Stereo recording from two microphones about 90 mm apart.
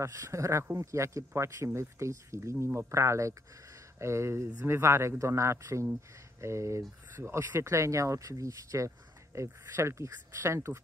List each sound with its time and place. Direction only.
0.0 s speech: 35° right (ahead or behind)